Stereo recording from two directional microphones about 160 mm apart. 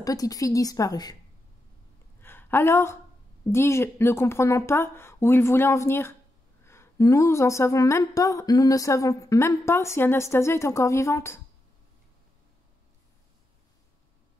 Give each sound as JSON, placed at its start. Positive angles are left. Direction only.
{"t": 0.0, "sound": "a woman's voice", "side_deg": 20}
{"t": 2.2, "sound": "a sound", "side_deg": 15}
{"t": 3.4, "sound": "a woman's voice", "side_deg": 15}